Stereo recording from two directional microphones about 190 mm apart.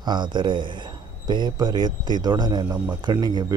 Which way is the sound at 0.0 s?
25° right (ahead or behind).